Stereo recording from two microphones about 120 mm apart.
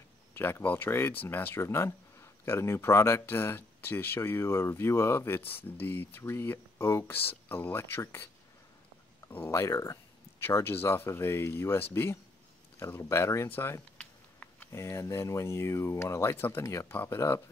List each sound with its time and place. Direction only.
0.3 s speech: 20° left (ahead or behind)
9.3 s speech: 20° left (ahead or behind)
13.9 s a sound: 10° left (ahead or behind)
14.7 s speech: 25° left (ahead or behind)